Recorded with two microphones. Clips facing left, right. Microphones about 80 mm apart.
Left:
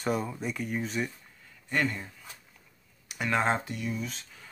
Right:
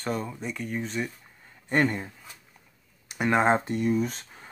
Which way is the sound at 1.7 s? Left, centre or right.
Right.